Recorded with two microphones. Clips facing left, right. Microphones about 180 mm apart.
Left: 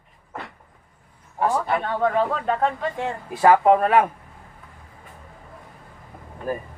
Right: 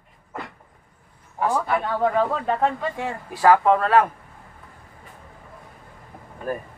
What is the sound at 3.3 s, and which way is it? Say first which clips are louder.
Speech: left 1 dB; 20° left (ahead or behind).